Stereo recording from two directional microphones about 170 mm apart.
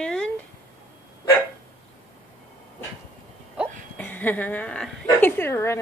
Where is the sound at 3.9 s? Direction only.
10° left (ahead or behind).